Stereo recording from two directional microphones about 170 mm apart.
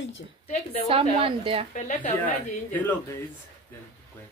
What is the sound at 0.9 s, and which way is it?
Speech, 30° right (ahead or behind).